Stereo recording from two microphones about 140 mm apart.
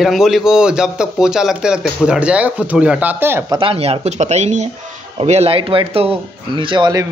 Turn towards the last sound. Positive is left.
turn(degrees=-35)  # may be behind; listen again after turning